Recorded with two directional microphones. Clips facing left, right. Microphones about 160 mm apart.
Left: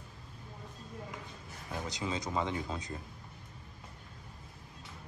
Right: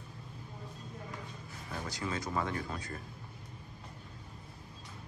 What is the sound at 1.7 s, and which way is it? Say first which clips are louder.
Speech: left 1 dB; 20° left (ahead or behind).